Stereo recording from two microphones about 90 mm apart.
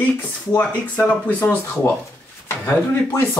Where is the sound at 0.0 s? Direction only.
20° left (ahead or behind).